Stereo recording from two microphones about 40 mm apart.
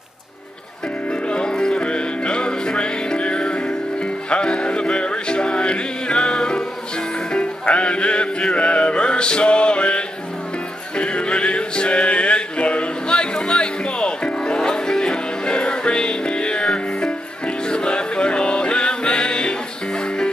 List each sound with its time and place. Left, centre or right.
1.2 s music: left